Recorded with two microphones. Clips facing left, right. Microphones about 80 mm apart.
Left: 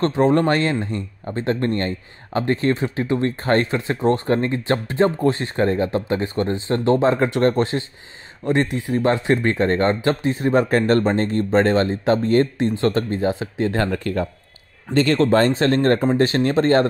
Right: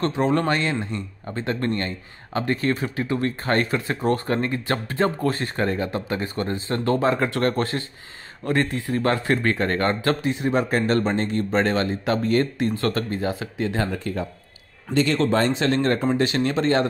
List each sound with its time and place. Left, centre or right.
0.1 s speech: left
10.2 s speech: left
13.7 s speech: left